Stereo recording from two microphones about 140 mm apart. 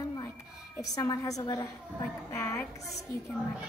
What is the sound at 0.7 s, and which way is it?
A woman's voice, 20° left (ahead or behind).